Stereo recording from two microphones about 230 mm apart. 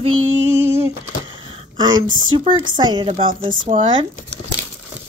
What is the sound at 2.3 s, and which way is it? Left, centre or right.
Speech, right.